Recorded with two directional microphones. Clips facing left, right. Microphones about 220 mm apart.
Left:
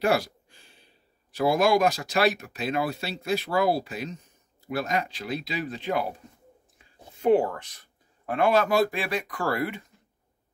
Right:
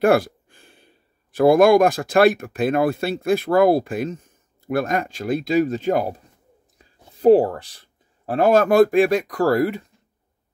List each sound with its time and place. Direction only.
0.0 s speech: 55° right (ahead or behind)